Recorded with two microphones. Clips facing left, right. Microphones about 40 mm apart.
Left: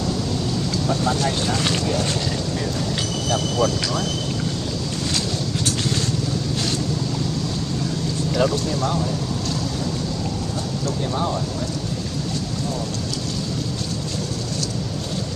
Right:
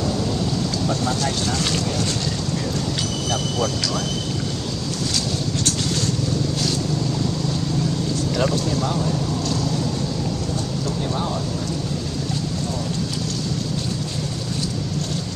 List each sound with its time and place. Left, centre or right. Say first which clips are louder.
1.0 s speech: left 1 dB; centre
3.3 s speech: left 4 dB; centre
8.4 s speech: left 2 dB; centre